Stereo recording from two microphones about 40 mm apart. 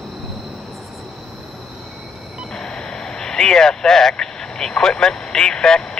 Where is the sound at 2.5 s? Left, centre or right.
Centre.